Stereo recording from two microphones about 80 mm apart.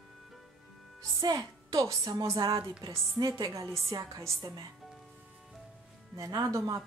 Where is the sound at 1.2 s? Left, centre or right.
Right.